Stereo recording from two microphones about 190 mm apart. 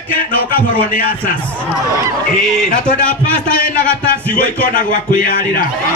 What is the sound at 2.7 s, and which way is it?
Speech, 45° left (ahead or behind).